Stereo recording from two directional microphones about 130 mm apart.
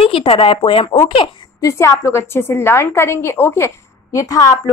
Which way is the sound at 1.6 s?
25° left (ahead or behind).